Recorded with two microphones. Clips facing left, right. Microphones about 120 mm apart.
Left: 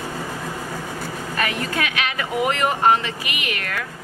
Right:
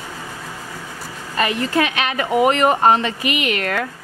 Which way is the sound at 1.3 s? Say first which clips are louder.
Right 6 dB; 25° right (ahead or behind).